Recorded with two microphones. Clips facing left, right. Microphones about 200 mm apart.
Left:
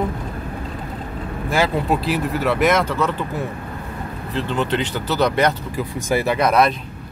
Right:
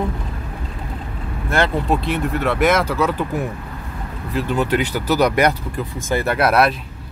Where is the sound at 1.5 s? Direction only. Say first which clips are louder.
Even; 5° left (ahead or behind).